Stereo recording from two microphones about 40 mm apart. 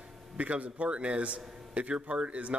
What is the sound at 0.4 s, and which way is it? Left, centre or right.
A man's voice, right.